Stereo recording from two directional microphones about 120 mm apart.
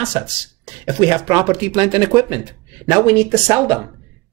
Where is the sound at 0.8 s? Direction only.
35° right (ahead or behind).